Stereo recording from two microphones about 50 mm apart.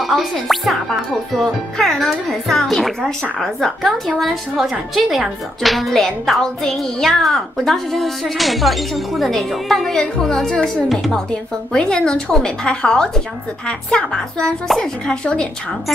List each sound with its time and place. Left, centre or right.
0.0 s a woman's voice: centre
4.6 s a woman's voice: centre